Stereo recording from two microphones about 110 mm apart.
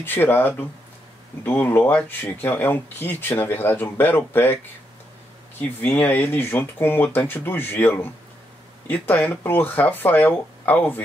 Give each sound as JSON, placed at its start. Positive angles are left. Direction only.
{"t": 0.0, "sound": "speech", "side_deg": 20}
{"t": 5.6, "sound": "speech", "side_deg": 15}